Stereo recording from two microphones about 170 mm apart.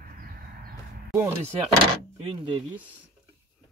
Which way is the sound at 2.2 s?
30° right (ahead or behind).